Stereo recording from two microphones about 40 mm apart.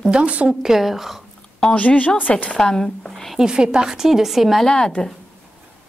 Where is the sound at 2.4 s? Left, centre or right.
Left.